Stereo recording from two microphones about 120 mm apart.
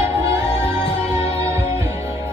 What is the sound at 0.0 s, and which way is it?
Music, 20° right (ahead or behind).